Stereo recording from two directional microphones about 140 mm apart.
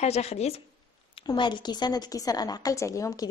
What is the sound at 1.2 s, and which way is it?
A woman's voice, 35° left (ahead or behind).